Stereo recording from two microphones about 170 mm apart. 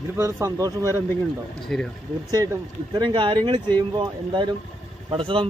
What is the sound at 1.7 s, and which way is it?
Speech, 5° left (ahead or behind).